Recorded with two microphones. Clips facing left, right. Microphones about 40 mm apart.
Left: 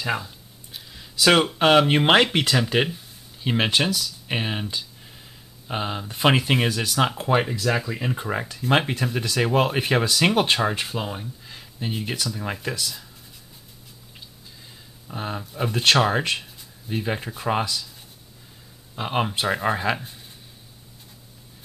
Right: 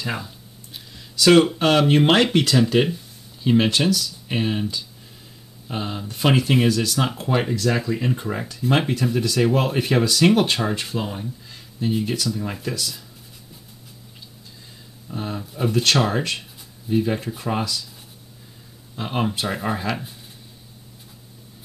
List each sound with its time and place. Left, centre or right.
0.0 s speech: centre
0.9 s a sound: centre
1.6 s speech: centre
15.0 s speech: centre
18.9 s speech: centre